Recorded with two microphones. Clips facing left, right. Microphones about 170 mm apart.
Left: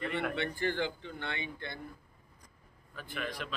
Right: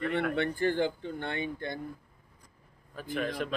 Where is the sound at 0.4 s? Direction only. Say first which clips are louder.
Right 7 dB; 45° right (ahead or behind).